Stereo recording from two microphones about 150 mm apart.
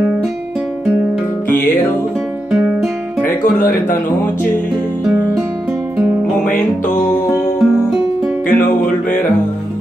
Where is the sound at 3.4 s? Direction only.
65° left (ahead or behind).